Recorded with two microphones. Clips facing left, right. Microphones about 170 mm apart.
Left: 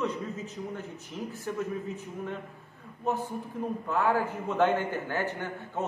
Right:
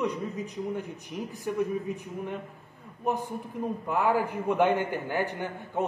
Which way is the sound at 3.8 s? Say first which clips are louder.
Right 1 dB; 15° right (ahead or behind).